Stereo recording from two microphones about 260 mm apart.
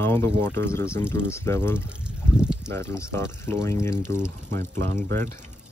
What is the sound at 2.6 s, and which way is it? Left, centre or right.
Speech, centre.